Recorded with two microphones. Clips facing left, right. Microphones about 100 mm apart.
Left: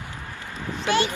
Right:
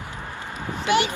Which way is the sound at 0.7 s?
20° right (ahead or behind).